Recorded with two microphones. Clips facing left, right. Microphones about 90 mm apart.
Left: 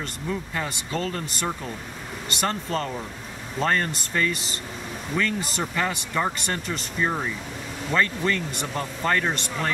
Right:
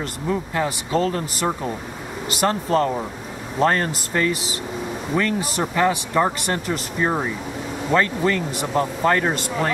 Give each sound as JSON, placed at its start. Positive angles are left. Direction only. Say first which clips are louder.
{"t": 0.0, "sound": "speech", "louder": "right 6 dB", "side_deg": -5}
{"t": 7.1, "sound": "speech", "louder": "right 6 dB", "side_deg": -20}
{"t": 7.9, "sound": "speech", "louder": "right 4 dB", "side_deg": -10}